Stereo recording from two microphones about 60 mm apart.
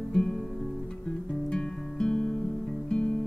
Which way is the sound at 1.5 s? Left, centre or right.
Centre.